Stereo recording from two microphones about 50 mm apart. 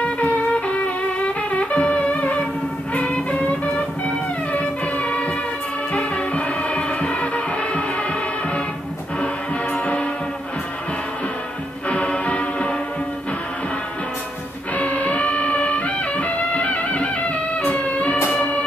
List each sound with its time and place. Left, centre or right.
0.2 s music: left
9.2 s music: left
11.9 s music: left
14.8 s music: left